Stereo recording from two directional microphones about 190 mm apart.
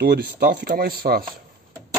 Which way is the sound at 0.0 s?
55° right (ahead or behind).